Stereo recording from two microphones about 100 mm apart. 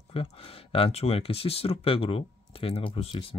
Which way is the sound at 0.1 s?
70° left (ahead or behind).